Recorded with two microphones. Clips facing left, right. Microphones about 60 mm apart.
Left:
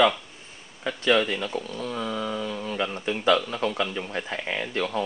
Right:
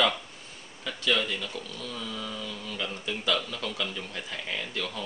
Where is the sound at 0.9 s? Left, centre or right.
Left.